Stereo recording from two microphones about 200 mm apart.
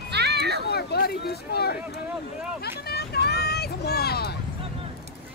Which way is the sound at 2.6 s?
50° left (ahead or behind).